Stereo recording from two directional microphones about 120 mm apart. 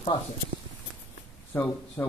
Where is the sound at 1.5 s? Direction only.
15° left (ahead or behind).